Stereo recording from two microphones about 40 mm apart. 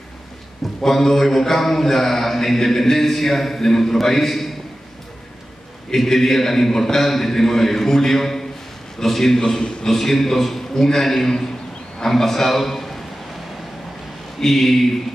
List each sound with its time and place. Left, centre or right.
0.8 s speech: centre
5.9 s speech: centre
9.4 s a man's voice: left
9.8 s a man's voice: centre
14.4 s speech: centre